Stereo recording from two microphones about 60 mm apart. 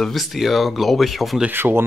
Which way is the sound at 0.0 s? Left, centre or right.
Centre.